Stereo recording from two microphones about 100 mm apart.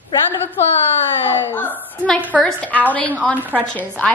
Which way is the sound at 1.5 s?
20° left (ahead or behind).